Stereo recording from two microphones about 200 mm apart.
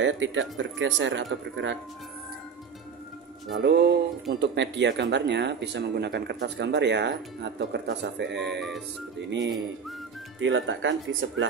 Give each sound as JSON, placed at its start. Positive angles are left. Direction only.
{"t": 0.0, "sound": "speech", "side_deg": -70}
{"t": 3.5, "sound": "speech", "side_deg": -55}
{"t": 8.4, "sound": "music", "side_deg": 0}
{"t": 10.4, "sound": "speech", "side_deg": -70}